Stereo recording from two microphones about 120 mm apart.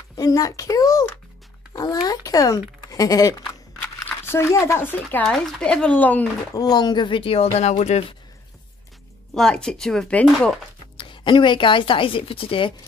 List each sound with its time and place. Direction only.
0.1 s a child's voice: 30° left (ahead or behind)
1.7 s music: 35° left (ahead or behind)
2.0 s a sound: 30° left (ahead or behind)
3.8 s speech: 20° left (ahead or behind)
5.2 s speech: 5° left (ahead or behind)
6.5 s a woman's voice: 35° left (ahead or behind); by 8.0 s 70° left (ahead or behind)
9.3 s speech: 5° left (ahead or behind)
11.0 s a woman's voice: 45° left (ahead or behind)